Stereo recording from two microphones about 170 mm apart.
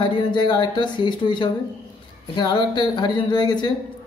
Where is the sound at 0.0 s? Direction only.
30° left (ahead or behind).